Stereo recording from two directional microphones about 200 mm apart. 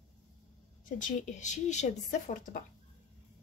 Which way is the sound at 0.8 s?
40° left (ahead or behind).